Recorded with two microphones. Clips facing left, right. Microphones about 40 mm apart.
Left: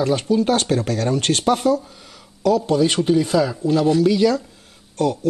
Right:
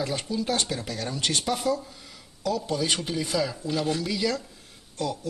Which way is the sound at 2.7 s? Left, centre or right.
Left.